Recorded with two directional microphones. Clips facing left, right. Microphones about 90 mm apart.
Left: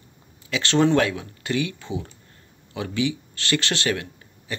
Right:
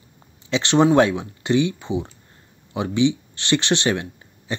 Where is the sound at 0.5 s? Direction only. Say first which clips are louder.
Right 3 dB; 20° right (ahead or behind).